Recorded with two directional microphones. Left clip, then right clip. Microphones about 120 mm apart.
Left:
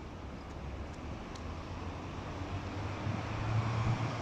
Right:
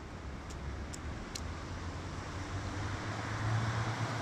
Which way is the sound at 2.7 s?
10° left (ahead or behind).